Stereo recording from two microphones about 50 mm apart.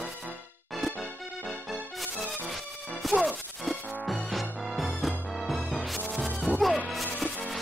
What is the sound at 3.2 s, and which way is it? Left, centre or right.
Music, centre.